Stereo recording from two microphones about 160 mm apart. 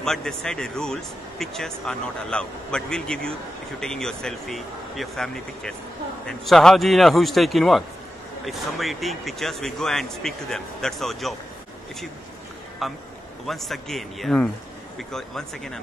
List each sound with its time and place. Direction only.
0.0 s speech: 5° left (ahead or behind)
12.8 s speech: centre (ahead or behind)